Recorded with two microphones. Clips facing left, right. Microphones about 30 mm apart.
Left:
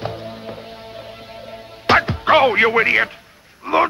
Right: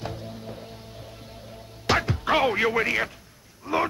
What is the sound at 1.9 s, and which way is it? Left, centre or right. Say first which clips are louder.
Speech: left 9 dB; left.